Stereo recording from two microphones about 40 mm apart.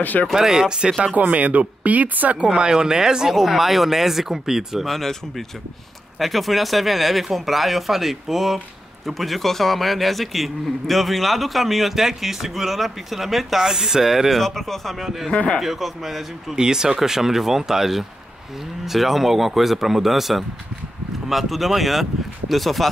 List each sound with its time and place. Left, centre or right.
0.0 s speech: left
0.3 s speech: centre
1.1 s speech: right
2.5 s speech: centre
4.8 s a man's voice: centre
6.1 s a man's voice: centre
14.3 s a man's voice: centre
15.0 s speech: centre
15.3 s speech: left
15.6 s a man's voice: centre
16.5 s a man's voice: centre